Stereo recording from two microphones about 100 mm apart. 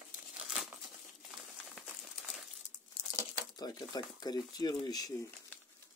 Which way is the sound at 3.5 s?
40° left (ahead or behind).